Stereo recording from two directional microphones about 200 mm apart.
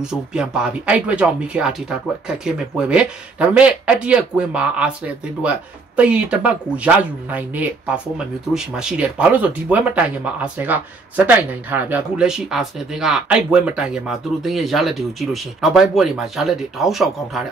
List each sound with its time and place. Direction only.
0.0 s speech: 5° right (ahead or behind)